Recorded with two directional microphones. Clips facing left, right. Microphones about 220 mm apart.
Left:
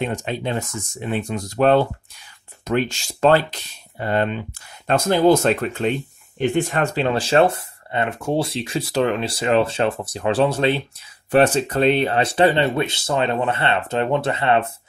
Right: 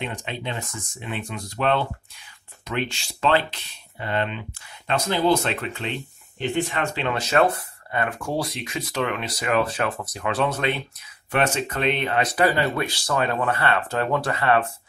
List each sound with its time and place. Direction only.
0.0 s speech: 45° left (ahead or behind); by 14.7 s 25° left (ahead or behind)